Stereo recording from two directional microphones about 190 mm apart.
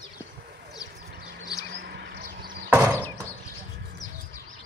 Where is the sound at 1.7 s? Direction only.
60° right (ahead or behind).